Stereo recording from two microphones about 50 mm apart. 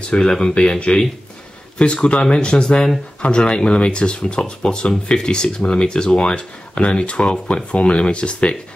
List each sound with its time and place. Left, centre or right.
0.0 s speech: centre